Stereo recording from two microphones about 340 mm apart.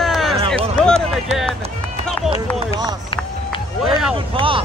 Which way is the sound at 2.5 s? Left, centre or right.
Centre.